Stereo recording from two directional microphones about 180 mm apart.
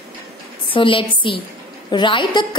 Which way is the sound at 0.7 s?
30° left (ahead or behind).